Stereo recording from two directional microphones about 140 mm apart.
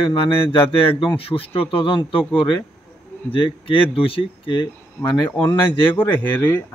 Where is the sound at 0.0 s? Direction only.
40° left (ahead or behind).